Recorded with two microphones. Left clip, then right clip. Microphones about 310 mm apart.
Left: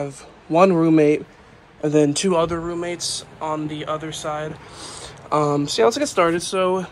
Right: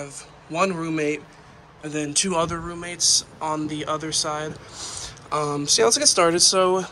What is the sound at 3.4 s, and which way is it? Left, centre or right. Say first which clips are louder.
Speech: left 1 dB; right.